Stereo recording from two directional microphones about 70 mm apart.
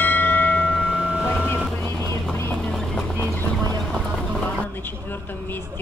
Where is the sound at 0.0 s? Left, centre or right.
Left.